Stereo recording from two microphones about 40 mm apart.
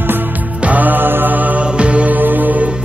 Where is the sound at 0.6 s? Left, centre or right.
Right.